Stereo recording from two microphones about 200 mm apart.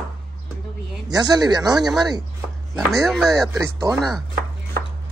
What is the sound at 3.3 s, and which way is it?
Speech, 15° right (ahead or behind).